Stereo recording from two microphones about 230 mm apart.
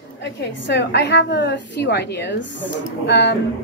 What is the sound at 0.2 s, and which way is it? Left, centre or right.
A woman's voice, left.